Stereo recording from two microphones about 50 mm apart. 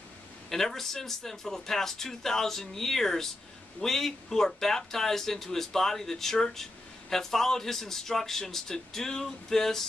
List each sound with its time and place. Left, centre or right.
0.5 s speech: centre